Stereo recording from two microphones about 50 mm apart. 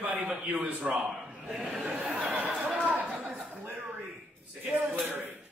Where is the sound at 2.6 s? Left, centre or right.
Right.